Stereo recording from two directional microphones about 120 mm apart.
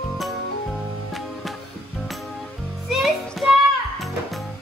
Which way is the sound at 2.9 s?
Centre (ahead or behind).